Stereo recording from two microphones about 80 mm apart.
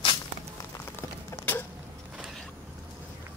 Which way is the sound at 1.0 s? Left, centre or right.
Left.